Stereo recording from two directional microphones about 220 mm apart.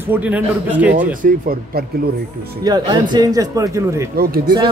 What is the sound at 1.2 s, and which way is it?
Speech, 40° right (ahead or behind).